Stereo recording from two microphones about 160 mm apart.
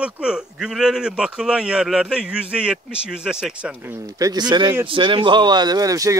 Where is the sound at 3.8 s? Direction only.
15° right (ahead or behind).